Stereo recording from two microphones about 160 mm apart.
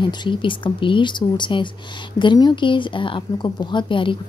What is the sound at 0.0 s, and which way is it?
A woman's voice, 30° left (ahead or behind).